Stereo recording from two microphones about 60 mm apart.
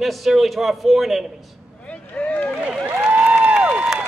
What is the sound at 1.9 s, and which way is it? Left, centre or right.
Vehicle, left.